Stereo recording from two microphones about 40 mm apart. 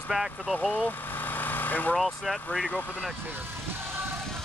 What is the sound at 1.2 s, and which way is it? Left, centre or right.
Vehicle, left.